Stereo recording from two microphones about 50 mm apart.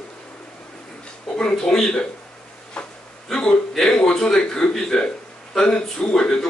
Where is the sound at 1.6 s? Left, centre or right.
Centre.